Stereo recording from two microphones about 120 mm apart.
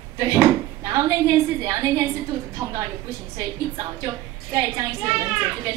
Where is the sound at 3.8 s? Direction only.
30° right (ahead or behind).